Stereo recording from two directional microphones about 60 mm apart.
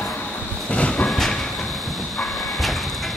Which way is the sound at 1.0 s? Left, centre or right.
Centre.